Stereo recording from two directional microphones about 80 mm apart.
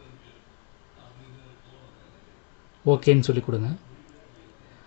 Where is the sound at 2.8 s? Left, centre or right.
Centre.